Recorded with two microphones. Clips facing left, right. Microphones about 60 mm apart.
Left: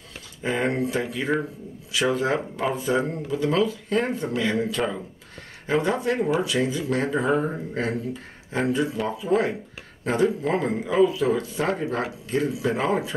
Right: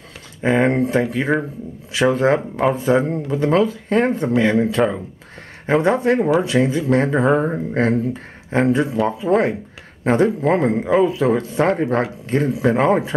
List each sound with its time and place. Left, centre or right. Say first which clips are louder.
0.4 s speech: right 8 dB; right